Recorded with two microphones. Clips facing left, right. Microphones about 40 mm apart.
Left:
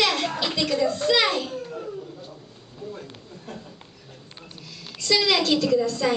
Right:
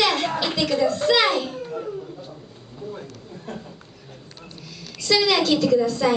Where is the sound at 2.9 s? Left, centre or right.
Centre.